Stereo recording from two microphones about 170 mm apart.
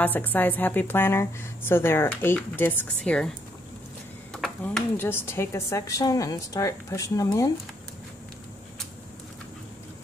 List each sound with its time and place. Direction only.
0.0 s a woman's voice: 10° left (ahead or behind)
4.3 s a sound: centre (ahead or behind)
4.9 s a woman's voice: 15° left (ahead or behind)